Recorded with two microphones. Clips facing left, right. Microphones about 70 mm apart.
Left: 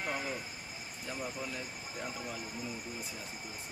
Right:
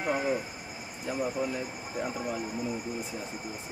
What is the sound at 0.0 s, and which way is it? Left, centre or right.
Vehicle, right.